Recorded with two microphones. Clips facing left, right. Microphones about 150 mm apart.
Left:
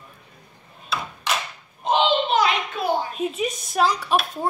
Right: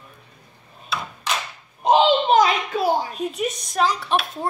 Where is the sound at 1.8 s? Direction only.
40° right (ahead or behind).